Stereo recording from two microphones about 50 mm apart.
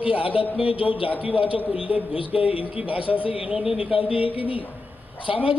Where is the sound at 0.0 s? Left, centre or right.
Right.